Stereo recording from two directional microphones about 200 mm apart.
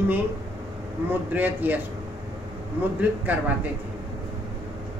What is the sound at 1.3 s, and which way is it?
Speech, 10° right (ahead or behind).